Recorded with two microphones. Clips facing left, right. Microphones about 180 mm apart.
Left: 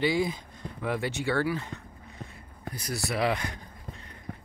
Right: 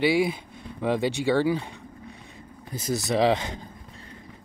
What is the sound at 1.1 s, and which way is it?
Speech, 15° right (ahead or behind).